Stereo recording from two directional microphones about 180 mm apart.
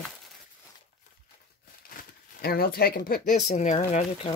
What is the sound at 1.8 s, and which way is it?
Shuffling cards, 55° left (ahead or behind).